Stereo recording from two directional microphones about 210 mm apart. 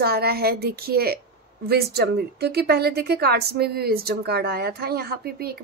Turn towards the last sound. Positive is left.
turn(degrees=-45)  # may be behind; listen again after turning